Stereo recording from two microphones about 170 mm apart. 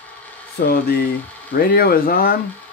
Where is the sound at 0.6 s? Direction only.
65° left (ahead or behind).